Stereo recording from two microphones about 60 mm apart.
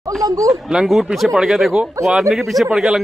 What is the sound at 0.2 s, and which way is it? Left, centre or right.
Speech, right.